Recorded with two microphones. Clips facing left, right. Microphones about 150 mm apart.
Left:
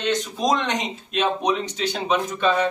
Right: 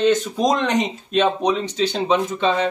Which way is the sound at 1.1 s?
30° right (ahead or behind).